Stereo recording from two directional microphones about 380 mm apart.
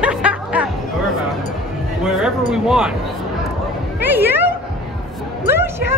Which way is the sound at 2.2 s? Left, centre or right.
Centre.